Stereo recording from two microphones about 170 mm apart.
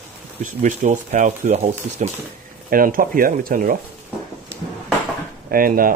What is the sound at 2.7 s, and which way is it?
Speech, 55° right (ahead or behind).